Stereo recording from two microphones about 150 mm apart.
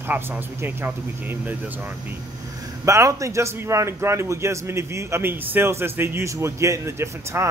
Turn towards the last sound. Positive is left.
turn(degrees=-15)  # may be behind; listen again after turning